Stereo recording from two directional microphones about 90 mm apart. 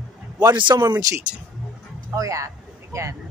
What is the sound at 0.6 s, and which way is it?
Speech, 60° right (ahead or behind).